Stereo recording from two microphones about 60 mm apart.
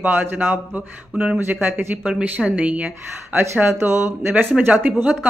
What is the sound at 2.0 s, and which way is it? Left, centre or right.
Speech, centre.